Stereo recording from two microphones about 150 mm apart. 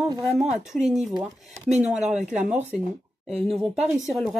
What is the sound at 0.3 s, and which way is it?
Speech, centre (ahead or behind).